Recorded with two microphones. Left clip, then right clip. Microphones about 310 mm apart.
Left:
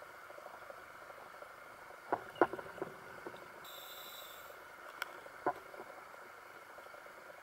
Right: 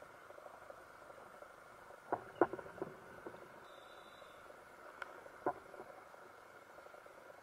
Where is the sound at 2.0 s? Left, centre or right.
Centre.